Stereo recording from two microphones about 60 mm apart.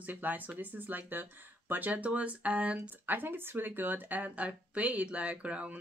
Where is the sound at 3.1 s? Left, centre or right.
Right.